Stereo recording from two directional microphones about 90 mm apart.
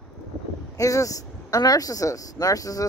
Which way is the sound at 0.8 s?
40° left (ahead or behind).